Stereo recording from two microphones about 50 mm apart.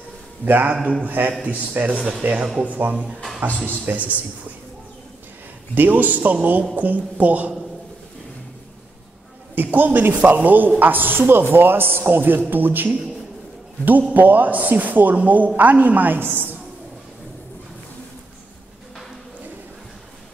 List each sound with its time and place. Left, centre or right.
0.5 s a woman's voice: right
5.8 s a woman's voice: right
9.6 s a woman's voice: right
14.1 s a woman's voice: right